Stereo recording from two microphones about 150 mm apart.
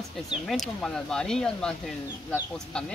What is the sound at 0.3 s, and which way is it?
Speech, centre (ahead or behind).